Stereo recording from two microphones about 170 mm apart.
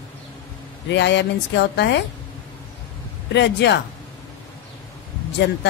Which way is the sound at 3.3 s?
90° left.